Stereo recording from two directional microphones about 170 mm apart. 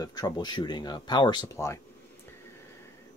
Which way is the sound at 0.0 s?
25° left (ahead or behind).